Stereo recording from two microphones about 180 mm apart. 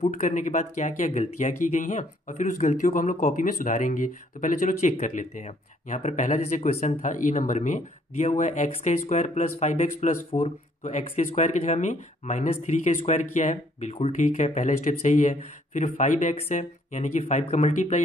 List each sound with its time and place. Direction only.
0.0 s speech: 45° left (ahead or behind)